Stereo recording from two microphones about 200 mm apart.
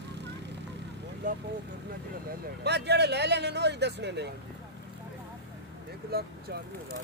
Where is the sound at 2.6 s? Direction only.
55° right (ahead or behind).